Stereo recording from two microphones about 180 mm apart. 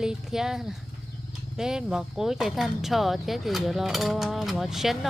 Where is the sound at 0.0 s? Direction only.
5° right (ahead or behind).